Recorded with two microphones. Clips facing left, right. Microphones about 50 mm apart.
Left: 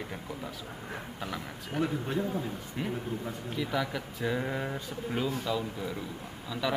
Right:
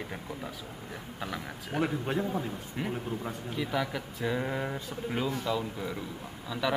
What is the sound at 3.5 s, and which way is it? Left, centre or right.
A man's voice, centre.